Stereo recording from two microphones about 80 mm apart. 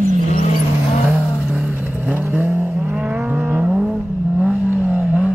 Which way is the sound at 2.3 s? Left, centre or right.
Centre.